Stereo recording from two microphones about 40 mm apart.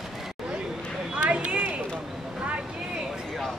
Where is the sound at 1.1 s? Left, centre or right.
Right.